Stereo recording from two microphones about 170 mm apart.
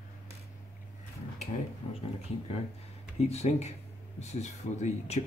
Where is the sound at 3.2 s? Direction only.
40° left (ahead or behind).